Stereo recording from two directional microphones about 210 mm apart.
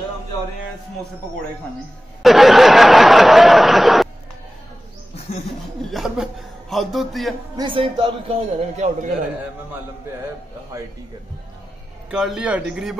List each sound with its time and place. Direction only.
2.2 s a sound: centre (ahead or behind)
5.9 s speech: centre (ahead or behind)
7.5 s a man's voice: 25° right (ahead or behind)
12.1 s speech: 5° right (ahead or behind)